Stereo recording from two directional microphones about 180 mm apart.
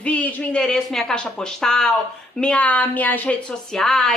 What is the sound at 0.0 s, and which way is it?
A woman's voice, 10° left (ahead or behind).